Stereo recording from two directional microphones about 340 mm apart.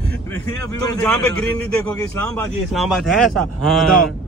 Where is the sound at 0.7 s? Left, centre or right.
Centre.